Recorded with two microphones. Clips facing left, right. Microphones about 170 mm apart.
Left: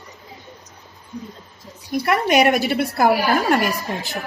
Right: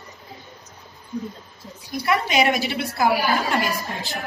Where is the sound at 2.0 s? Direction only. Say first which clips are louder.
Left 3 dB; 55° left (ahead or behind).